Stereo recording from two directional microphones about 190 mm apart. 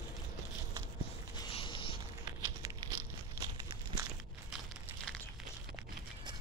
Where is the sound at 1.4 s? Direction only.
25° left (ahead or behind).